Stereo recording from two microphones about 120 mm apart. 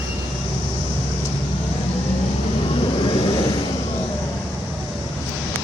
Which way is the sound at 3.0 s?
40° left (ahead or behind).